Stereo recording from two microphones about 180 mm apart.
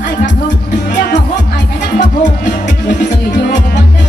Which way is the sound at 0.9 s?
45° left (ahead or behind).